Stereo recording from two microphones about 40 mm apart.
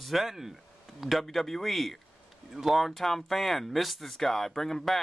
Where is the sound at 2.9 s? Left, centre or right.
Centre.